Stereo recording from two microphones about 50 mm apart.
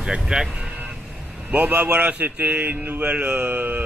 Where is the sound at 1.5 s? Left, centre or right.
Right.